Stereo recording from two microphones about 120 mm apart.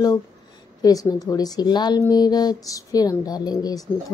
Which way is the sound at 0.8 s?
30° left (ahead or behind).